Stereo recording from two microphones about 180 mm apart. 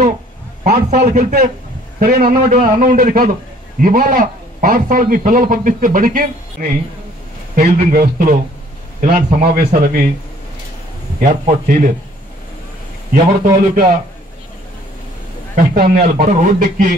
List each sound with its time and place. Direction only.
0.8 s a man's voice: 40° right (ahead or behind)
7.9 s a man's voice: 50° right (ahead or behind)
11.1 s a man's voice: 50° right (ahead or behind)
13.1 s a man's voice: 50° right (ahead or behind)
15.5 s a man's voice: 50° right (ahead or behind)